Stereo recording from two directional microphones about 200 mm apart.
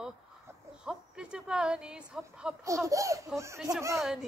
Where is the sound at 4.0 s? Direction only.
Centre (ahead or behind).